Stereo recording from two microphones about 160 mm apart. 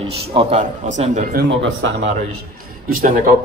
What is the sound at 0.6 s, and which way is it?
Speech, 50° right (ahead or behind).